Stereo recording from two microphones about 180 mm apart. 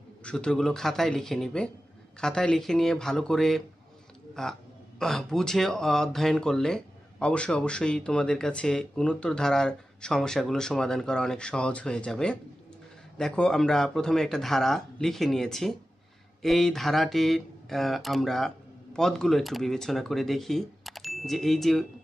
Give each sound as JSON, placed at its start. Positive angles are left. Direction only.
{"t": 0.2, "sound": "speech", "side_deg": 5}